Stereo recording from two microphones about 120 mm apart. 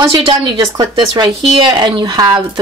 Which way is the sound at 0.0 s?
45° right (ahead or behind).